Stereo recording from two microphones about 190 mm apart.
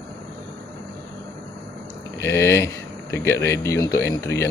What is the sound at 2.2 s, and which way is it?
Speech, 15° left (ahead or behind).